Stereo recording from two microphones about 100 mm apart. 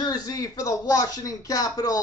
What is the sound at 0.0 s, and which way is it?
Speech, 40° left (ahead or behind).